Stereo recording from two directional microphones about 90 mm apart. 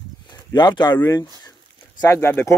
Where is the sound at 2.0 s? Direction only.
30° left (ahead or behind).